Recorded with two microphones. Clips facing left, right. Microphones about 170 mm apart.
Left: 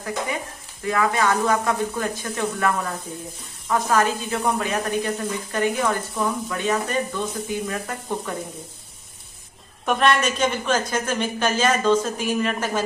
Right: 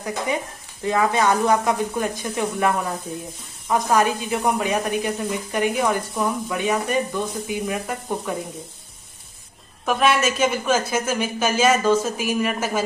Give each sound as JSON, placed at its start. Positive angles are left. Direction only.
{"t": 0.8, "sound": "speech", "side_deg": -25}
{"t": 9.8, "sound": "speech", "side_deg": -5}